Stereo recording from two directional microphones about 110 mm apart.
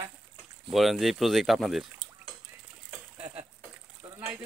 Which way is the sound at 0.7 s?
Centre (ahead or behind).